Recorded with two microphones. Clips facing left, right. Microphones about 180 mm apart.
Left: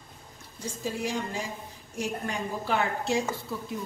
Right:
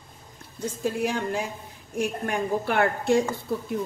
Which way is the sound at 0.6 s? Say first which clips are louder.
Right 6 dB; 60° right (ahead or behind).